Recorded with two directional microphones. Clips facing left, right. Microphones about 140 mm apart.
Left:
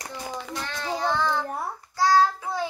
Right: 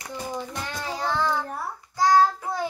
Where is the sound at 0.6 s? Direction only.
5° right (ahead or behind).